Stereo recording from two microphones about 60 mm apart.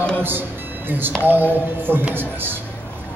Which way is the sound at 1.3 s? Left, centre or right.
Right.